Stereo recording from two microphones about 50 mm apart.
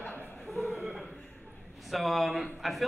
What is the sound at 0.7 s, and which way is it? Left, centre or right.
Chuckle, centre.